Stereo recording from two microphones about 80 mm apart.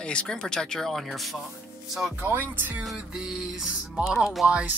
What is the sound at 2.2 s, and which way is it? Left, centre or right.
Speech, right.